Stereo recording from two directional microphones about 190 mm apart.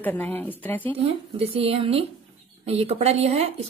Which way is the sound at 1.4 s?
30° right (ahead or behind).